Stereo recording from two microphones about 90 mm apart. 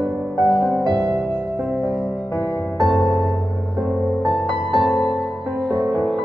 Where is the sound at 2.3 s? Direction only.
40° left (ahead or behind).